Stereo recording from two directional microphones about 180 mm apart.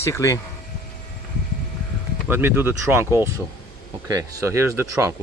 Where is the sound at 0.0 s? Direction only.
15° left (ahead or behind).